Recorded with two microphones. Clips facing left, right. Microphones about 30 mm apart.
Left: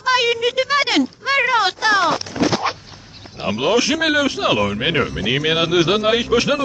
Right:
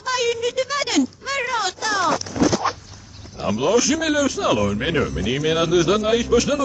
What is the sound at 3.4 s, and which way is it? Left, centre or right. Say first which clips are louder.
A man's voice: left 1 dB; left.